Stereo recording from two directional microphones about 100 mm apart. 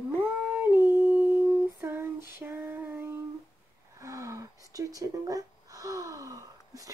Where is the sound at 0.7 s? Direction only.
40° left (ahead or behind).